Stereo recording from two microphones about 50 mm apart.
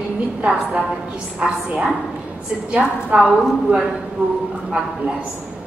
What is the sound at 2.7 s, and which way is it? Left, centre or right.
A woman's voice, right.